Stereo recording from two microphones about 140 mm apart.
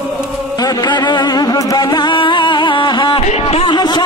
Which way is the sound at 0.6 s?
30° left (ahead or behind).